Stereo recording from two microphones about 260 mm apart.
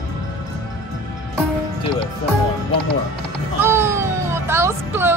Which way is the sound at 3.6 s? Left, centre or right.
Centre.